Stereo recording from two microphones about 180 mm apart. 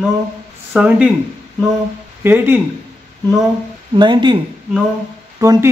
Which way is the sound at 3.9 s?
25° right (ahead or behind).